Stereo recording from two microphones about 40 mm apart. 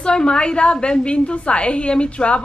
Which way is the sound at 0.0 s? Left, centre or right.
Left.